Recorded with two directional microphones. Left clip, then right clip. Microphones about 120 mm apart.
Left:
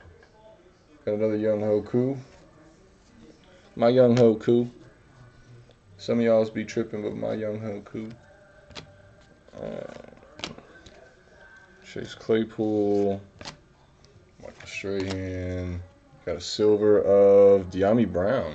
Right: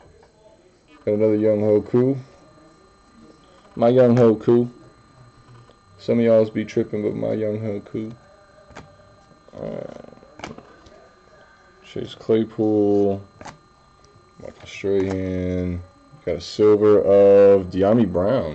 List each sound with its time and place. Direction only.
1.0 s speech: 15° right (ahead or behind)
3.7 s speech: centre (ahead or behind)
4.0 s speech: 25° left (ahead or behind)
4.3 s speech: centre (ahead or behind)
6.0 s speech: 15° right (ahead or behind)
9.5 s roaring cats: 5° left (ahead or behind)
11.8 s speech: centre (ahead or behind)
14.8 s speech: 10° right (ahead or behind)
16.3 s speech: 5° right (ahead or behind)